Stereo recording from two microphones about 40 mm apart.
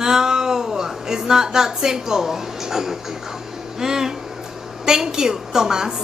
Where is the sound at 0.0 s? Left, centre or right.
Centre.